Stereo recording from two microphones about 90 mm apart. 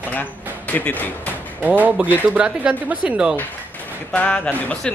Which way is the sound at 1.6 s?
15° right (ahead or behind).